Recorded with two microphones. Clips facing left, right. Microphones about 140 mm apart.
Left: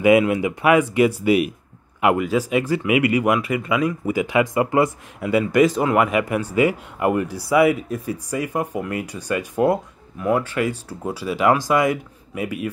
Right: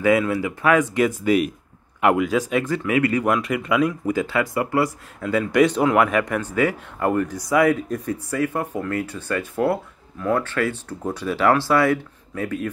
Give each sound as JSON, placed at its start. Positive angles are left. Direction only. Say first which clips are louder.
{"t": 0.0, "sound": "speech", "louder": "left 3 dB", "side_deg": 15}
{"t": 5.3, "sound": "speech", "louder": "left 1 dB", "side_deg": 5}